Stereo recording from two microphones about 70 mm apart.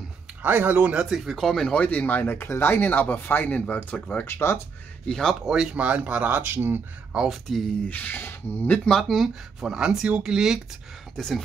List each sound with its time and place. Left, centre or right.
0.4 s speech: right
1.1 s speech: centre
1.4 s speech: centre; by 2.8 s left
2.8 s speech: left
4.3 s speech: left
5.0 s speech: centre
5.3 s speech: centre; by 7.2 s right
7.2 s speech: centre
7.9 s speech: left
8.8 s speech: centre
11.1 s speech: centre